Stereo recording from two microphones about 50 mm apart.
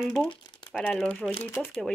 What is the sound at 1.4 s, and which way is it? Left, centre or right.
Speech, left.